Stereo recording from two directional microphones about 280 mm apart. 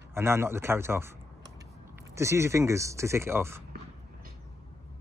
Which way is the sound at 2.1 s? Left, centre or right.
Centre.